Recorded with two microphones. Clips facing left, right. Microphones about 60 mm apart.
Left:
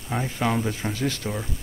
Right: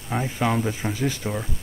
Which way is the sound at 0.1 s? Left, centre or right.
Centre.